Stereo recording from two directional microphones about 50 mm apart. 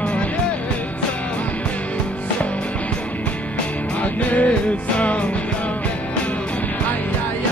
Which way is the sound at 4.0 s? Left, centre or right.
Left.